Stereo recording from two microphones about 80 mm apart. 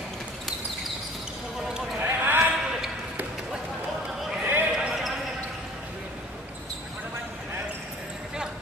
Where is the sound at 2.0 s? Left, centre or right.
Right.